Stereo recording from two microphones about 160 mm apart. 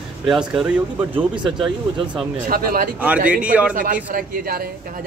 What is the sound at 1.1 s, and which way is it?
Speech, 30° right (ahead or behind).